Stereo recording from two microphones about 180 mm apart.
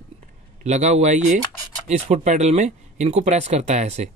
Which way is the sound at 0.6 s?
40° right (ahead or behind).